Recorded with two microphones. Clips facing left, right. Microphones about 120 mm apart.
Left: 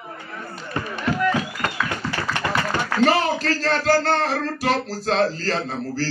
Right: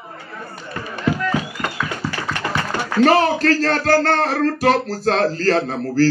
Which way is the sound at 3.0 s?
50° right (ahead or behind).